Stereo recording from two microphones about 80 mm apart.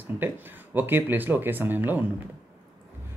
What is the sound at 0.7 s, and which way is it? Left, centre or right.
Speech, right.